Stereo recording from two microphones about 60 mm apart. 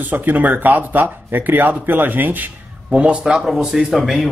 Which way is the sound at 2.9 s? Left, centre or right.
Right.